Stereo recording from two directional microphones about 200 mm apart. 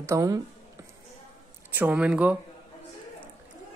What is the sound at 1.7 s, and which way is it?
Speech, 10° right (ahead or behind).